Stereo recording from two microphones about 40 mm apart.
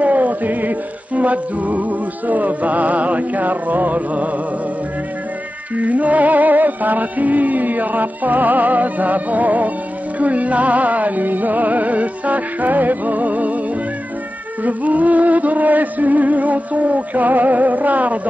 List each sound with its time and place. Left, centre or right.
0.0 s music: right
5.8 s music: right
14.6 s music: right